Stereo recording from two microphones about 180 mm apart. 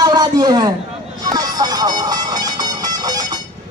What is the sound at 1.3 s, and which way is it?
Music, 20° right (ahead or behind).